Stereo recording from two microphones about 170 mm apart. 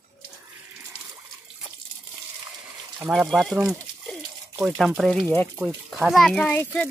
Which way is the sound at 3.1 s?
Centre (ahead or behind).